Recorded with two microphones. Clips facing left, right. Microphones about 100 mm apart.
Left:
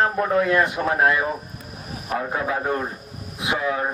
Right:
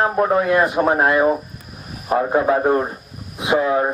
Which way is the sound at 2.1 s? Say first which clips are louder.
Right 8 dB; 30° right (ahead or behind).